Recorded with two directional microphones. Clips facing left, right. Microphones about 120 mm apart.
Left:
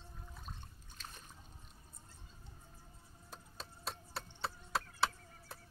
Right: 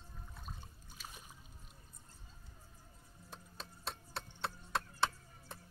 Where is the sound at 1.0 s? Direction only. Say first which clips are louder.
Even; 10° right (ahead or behind).